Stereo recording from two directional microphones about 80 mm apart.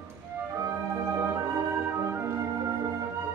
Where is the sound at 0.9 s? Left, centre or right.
Right.